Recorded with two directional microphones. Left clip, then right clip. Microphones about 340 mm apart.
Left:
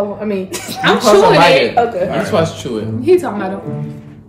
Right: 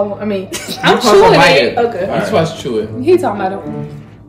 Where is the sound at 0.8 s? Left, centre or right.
Centre.